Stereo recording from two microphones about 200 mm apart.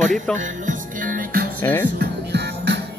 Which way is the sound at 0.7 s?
45° right (ahead or behind).